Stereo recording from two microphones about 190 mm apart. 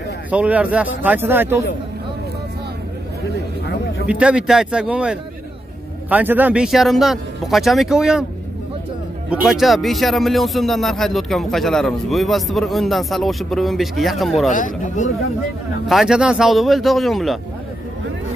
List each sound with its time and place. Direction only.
0.3 s speech: 5° right (ahead or behind)
4.1 s speech: 5° right (ahead or behind)
9.3 s speech: centre (ahead or behind)
14.5 s speech: 45° left (ahead or behind)
15.9 s speech: centre (ahead or behind)